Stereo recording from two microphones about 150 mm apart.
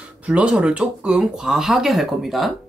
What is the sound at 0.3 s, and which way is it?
Speech, 5° right (ahead or behind).